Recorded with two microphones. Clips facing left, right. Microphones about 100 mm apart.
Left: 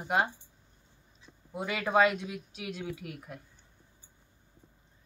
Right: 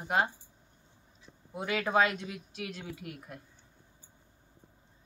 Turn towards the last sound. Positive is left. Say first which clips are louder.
# left 1 dB
turn(degrees=0)  # may be behind; listen again after turning